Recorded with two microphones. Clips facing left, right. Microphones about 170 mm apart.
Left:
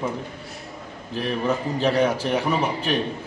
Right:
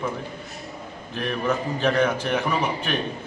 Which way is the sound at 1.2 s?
35° left (ahead or behind).